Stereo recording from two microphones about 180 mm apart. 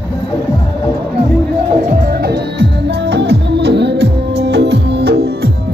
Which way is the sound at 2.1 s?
65° right (ahead or behind).